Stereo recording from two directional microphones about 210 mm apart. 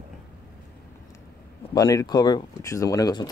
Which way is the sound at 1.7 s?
15° left (ahead or behind).